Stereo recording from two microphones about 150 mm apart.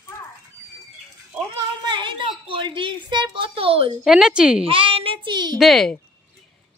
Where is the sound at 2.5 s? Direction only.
35° right (ahead or behind).